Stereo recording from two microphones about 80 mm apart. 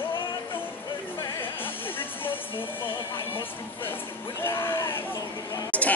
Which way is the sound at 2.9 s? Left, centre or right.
Left.